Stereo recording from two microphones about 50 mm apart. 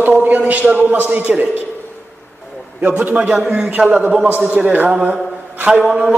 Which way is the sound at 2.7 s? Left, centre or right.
Right.